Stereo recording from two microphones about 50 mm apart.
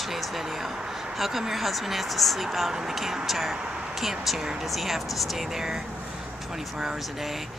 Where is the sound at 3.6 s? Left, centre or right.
Centre.